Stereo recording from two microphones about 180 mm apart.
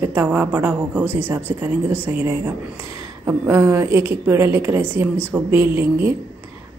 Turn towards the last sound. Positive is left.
turn(degrees=-15)  # may be behind; listen again after turning